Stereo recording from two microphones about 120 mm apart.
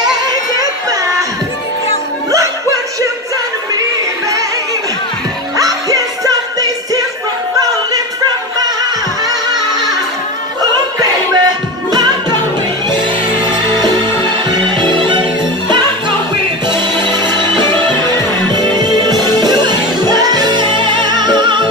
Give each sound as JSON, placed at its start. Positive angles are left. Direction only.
{"t": 0.0, "sound": "a sound", "side_deg": -35}
{"t": 5.6, "sound": "music", "side_deg": -30}
{"t": 9.3, "sound": "music", "side_deg": -30}
{"t": 11.0, "sound": "music", "side_deg": -35}
{"t": 14.8, "sound": "music", "side_deg": -40}
{"t": 16.6, "sound": "music", "side_deg": -40}